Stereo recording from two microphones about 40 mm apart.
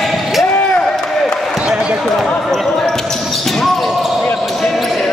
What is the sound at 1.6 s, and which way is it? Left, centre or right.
Basketball bounce, right.